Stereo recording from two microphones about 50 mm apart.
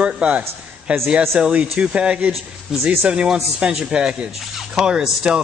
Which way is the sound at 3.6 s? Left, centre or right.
Centre.